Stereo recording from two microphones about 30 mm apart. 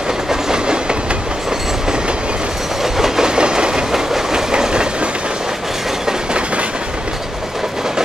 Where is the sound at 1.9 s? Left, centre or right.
Right.